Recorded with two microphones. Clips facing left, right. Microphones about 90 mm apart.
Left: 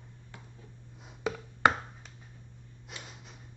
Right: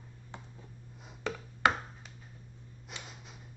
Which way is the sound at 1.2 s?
15° left (ahead or behind).